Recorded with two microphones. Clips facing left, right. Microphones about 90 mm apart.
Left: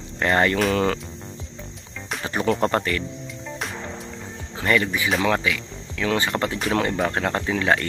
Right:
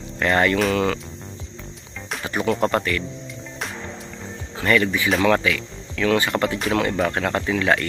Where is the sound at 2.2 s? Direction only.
30° left (ahead or behind).